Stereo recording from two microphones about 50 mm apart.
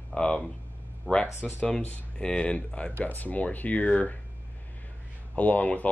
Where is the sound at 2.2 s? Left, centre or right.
Centre.